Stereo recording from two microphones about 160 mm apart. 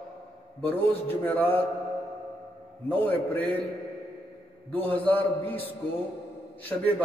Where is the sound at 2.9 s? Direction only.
10° left (ahead or behind).